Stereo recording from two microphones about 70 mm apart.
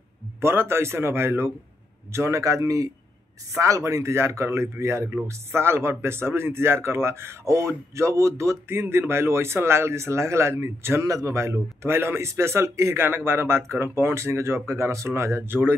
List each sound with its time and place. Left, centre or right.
0.4 s speech: right
2.1 s speech: right